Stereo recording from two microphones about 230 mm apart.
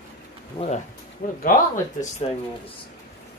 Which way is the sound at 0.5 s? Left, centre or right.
Left.